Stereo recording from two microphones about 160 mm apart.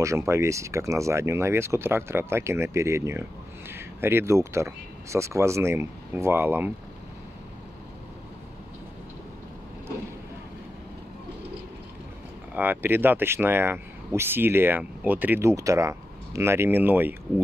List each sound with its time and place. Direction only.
0.0 s speech: 20° right (ahead or behind)
12.5 s speech: 10° right (ahead or behind)